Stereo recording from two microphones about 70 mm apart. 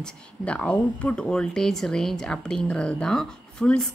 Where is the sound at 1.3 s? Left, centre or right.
Centre.